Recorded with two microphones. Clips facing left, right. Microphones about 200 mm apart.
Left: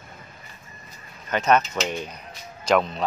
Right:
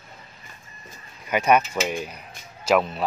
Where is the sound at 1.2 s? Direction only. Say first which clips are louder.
Right 1 dB; 10° right (ahead or behind).